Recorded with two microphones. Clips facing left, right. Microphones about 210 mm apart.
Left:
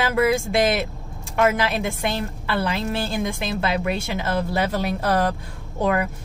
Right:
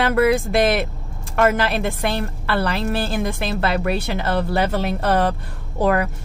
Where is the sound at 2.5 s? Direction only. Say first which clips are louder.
Right 2 dB; 65° right (ahead or behind).